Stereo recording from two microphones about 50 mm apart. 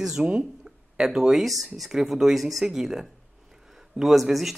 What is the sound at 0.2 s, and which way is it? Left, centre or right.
A woman's voice, centre.